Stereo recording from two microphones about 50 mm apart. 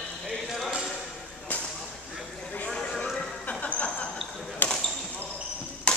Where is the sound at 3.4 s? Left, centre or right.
Left.